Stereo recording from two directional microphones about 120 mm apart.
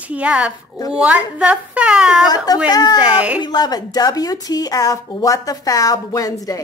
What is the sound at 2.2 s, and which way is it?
Speech, 30° left (ahead or behind).